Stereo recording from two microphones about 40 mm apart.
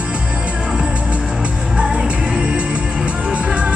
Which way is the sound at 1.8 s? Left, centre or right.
Right.